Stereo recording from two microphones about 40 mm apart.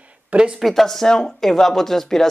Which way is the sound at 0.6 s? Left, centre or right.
Centre.